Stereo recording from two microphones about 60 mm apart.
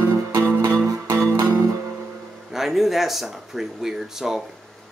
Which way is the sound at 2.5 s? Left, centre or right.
Centre.